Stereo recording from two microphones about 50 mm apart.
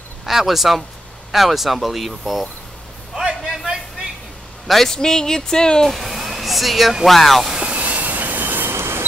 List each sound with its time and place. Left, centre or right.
0.2 s speech: centre
3.2 s a sound: centre
4.6 s speech: centre
5.9 s speech: centre
7.4 s vehicle: centre
7.7 s train: right
8.7 s a sound: right